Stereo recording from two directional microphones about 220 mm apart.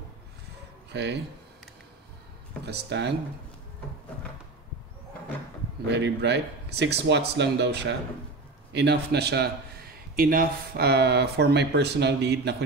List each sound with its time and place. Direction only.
0.9 s speech: 50° right (ahead or behind)
2.6 s speech: 50° right (ahead or behind)
5.9 s speech: 50° right (ahead or behind)